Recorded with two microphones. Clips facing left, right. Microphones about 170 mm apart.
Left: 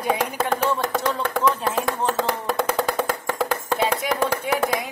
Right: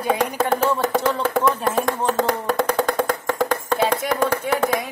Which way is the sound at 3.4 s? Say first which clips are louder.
Right 2 dB; 5° left (ahead or behind).